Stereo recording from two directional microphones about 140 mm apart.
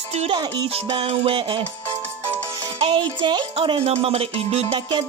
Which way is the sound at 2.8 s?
35° right (ahead or behind).